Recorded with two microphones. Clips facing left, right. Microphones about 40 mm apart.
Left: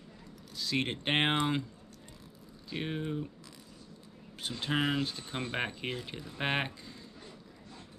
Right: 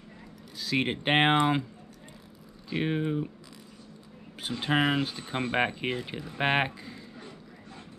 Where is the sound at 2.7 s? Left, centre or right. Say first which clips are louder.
Right 7 dB; centre.